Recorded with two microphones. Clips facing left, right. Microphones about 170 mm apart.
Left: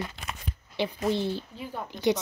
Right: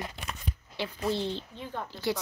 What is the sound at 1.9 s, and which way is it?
Speech, 20° left (ahead or behind).